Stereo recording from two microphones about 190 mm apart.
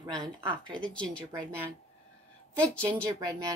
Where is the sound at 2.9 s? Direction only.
20° right (ahead or behind).